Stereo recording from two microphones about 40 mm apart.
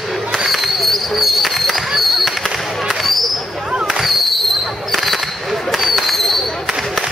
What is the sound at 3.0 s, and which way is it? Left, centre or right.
Basketball bounce, centre.